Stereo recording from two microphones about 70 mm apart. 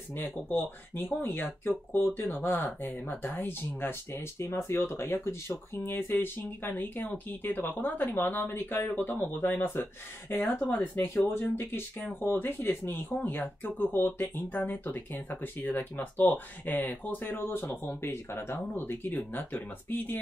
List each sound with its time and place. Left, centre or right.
0.1 s speech: left